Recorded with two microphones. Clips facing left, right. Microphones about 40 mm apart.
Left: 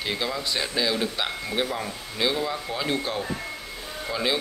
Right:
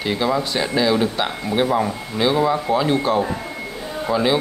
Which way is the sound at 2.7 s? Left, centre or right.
Centre.